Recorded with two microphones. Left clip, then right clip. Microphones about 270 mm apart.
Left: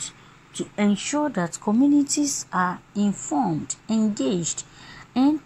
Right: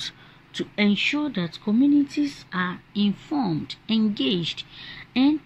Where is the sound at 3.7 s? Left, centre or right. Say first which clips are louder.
Even; centre.